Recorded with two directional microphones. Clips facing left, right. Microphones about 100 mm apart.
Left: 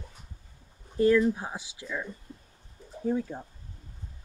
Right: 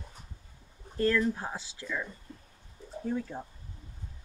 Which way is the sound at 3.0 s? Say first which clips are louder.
Left 4 dB; 15° left (ahead or behind).